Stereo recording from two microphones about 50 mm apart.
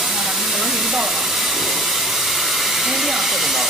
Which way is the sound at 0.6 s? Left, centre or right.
Centre.